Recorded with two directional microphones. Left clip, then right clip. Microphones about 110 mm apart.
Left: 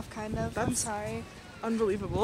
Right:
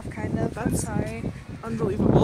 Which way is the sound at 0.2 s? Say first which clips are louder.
Right 3 dB; 15° left (ahead or behind).